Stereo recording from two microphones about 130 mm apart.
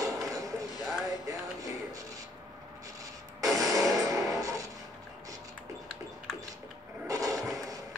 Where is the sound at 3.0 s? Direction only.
25° right (ahead or behind).